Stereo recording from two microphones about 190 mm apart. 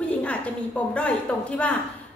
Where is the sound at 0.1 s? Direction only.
5° left (ahead or behind).